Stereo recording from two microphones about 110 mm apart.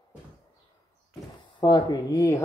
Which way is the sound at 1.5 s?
40° left (ahead or behind).